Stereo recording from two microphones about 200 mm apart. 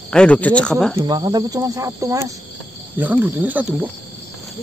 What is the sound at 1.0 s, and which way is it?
Speech, 20° right (ahead or behind).